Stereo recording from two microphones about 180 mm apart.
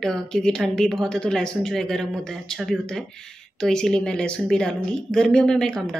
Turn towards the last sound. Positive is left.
turn(degrees=5)  # may be behind; listen again after turning